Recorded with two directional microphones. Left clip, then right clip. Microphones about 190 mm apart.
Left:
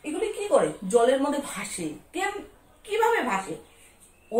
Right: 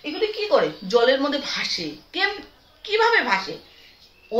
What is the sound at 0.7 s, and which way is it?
Speech, 5° right (ahead or behind).